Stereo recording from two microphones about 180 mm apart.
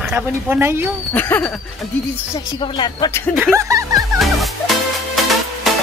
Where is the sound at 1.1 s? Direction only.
10° left (ahead or behind).